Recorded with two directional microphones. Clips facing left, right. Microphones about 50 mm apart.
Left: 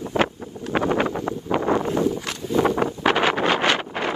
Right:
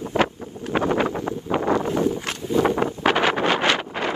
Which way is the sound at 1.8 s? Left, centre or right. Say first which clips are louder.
Even; right.